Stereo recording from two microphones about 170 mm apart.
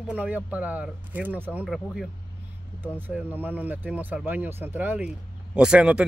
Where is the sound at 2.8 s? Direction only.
10° right (ahead or behind).